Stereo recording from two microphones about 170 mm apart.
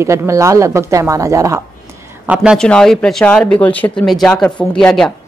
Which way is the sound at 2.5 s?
5° left (ahead or behind).